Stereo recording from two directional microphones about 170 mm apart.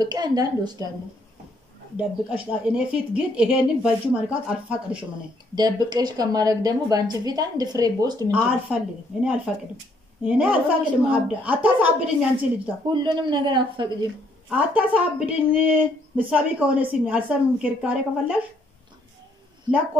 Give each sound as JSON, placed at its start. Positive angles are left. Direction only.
{"t": 0.0, "sound": "speech", "side_deg": -25}
{"t": 2.0, "sound": "speech", "side_deg": -5}
{"t": 5.5, "sound": "speech", "side_deg": -25}
{"t": 8.3, "sound": "speech", "side_deg": -10}
{"t": 12.9, "sound": "speech", "side_deg": -25}
{"t": 14.7, "sound": "speech", "side_deg": -10}